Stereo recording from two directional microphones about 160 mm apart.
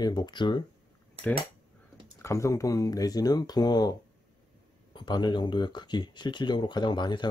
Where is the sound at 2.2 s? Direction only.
20° left (ahead or behind).